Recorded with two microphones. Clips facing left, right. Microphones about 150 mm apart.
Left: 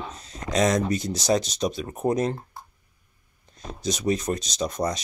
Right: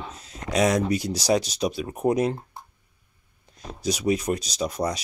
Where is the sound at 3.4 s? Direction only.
10° right (ahead or behind).